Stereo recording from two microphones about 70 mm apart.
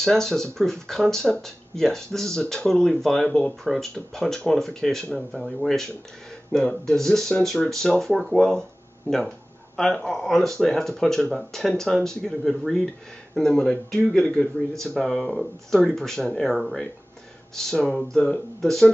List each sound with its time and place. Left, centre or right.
0.0 s speech: centre
6.9 s speech: centre
9.8 s speech: centre